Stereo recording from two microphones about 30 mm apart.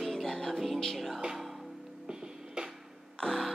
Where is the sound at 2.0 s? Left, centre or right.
Right.